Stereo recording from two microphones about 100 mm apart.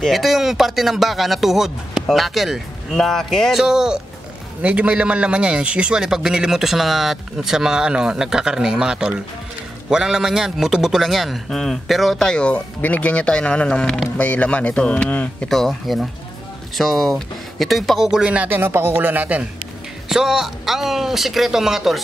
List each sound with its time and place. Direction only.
0.0 s a man's voice: centre (ahead or behind)
15.5 s a man's voice: centre (ahead or behind); by 19.4 s 15° right (ahead or behind)
20.1 s a man's voice: 5° right (ahead or behind)